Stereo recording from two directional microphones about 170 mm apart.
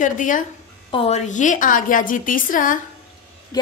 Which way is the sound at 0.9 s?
35° left (ahead or behind).